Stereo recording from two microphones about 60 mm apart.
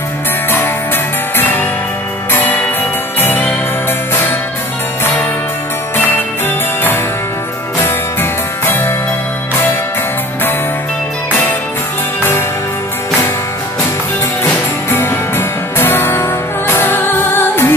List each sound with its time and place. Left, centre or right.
1.3 s music: left
7.8 s music: left
14.5 s music: left